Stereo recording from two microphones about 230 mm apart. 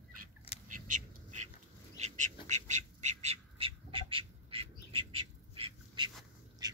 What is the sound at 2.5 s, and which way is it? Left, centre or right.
Bird, right.